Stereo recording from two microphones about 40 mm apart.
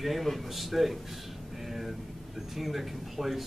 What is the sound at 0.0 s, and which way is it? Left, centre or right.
A man's voice, centre.